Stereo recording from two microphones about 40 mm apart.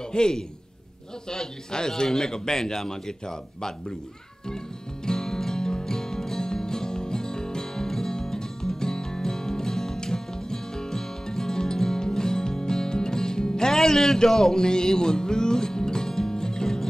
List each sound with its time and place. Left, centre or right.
0.1 s a man's voice: centre
5.0 s music: centre